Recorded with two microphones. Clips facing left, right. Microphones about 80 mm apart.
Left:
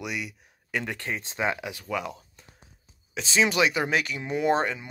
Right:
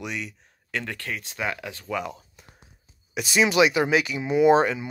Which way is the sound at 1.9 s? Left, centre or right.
Centre.